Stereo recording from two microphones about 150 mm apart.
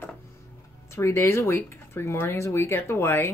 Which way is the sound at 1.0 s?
20° left (ahead or behind).